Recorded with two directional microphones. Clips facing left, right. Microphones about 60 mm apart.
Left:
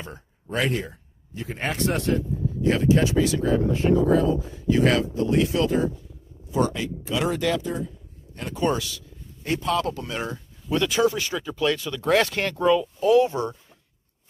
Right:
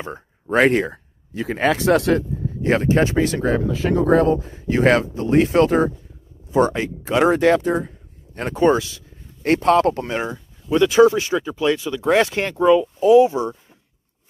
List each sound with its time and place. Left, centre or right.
0.0 s a sound: right
0.6 s speech: right
2.6 s speech: right
3.5 s speech: right
4.1 s speech: right
4.6 s speech: right
6.5 s speech: right
9.4 s speech: right
10.2 s speech: centre
10.9 s speech: right